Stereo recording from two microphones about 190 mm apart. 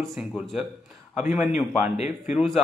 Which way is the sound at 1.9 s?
35° left (ahead or behind).